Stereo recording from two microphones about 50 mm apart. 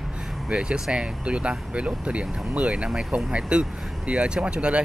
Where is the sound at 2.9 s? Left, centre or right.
Centre.